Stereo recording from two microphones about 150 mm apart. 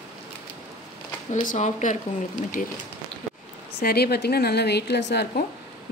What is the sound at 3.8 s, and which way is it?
A woman's voice, 90° left.